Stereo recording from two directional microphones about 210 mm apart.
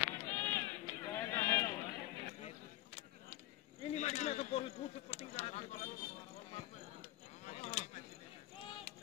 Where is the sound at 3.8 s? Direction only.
35° left (ahead or behind).